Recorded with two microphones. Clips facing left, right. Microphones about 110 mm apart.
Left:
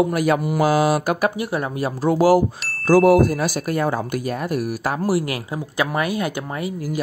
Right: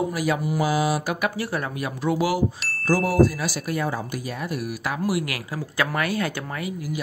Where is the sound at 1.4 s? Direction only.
20° left (ahead or behind); by 2.4 s 40° left (ahead or behind).